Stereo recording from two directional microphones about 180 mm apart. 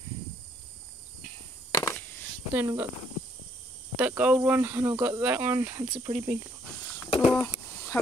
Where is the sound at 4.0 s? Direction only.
5° right (ahead or behind).